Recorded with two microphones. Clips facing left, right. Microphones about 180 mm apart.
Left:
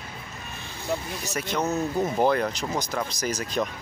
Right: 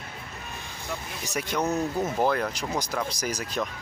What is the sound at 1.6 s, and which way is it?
Speech, 5° left (ahead or behind).